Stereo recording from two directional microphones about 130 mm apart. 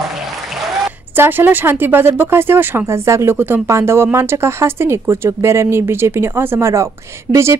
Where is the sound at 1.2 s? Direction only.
15° right (ahead or behind).